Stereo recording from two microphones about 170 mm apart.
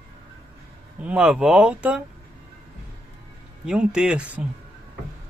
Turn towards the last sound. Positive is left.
turn(degrees=-5)  # may be behind; listen again after turning